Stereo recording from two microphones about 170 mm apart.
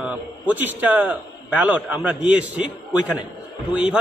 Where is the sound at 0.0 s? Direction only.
10° right (ahead or behind).